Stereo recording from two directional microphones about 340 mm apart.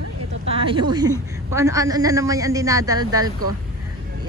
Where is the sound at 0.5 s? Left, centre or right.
Centre.